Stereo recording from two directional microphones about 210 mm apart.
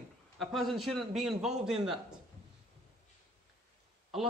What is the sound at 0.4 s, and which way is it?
A man's voice, centre (ahead or behind).